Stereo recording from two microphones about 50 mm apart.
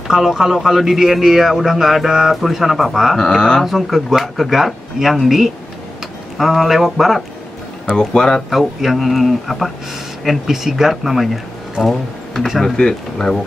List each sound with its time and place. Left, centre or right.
0.1 s a man's voice: centre
3.2 s speech: centre
3.6 s a man's voice: centre
7.9 s speech: centre
8.5 s a man's voice: centre
12.7 s speech: centre